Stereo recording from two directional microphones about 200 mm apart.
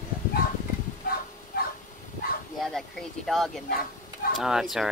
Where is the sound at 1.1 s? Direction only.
45° left (ahead or behind).